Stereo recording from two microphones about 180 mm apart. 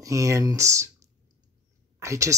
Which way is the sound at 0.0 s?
20° right (ahead or behind).